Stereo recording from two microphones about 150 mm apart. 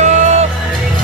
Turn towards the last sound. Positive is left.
turn(degrees=-50)  # may be behind; listen again after turning